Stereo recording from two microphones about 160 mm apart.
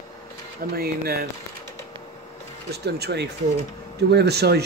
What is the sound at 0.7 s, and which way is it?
Speech, 70° right (ahead or behind).